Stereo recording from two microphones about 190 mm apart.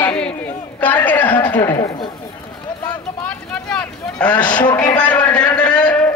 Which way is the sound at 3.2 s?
5° left (ahead or behind).